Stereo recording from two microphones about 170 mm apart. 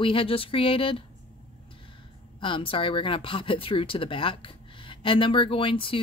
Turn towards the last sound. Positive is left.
turn(degrees=30)  # may be behind; listen again after turning